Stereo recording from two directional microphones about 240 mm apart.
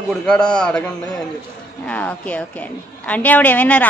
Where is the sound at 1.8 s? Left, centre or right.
Centre.